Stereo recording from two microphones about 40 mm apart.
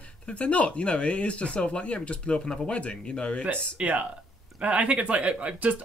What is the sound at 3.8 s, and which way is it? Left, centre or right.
Speech, right.